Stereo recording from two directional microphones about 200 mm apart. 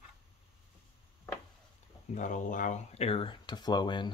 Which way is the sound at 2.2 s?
40° left (ahead or behind).